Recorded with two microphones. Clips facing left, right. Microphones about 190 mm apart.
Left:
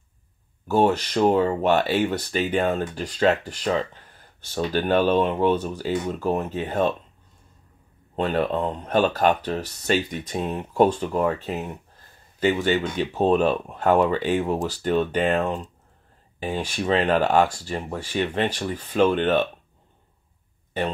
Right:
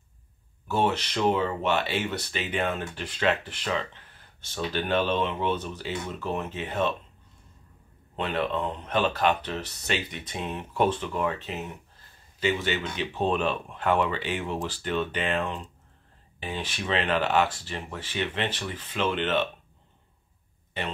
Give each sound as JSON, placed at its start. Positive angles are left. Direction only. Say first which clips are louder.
{"t": 0.7, "sound": "speech", "louder": "left 6 dB", "side_deg": 40}
{"t": 8.2, "sound": "speech", "louder": "left 5 dB", "side_deg": 45}